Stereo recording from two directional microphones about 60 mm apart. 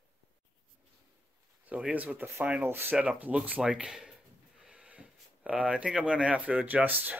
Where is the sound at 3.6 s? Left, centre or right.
Centre.